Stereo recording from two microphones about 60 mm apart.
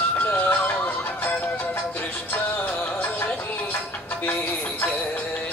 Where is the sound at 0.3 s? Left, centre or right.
Left.